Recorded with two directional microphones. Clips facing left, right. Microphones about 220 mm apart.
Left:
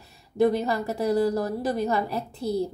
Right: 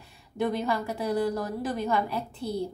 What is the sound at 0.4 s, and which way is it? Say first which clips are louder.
A woman's voice: left 5 dB; 40° left (ahead or behind).